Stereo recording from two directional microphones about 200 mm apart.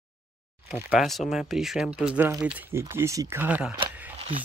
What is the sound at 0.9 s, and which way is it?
Speech, centre (ahead or behind).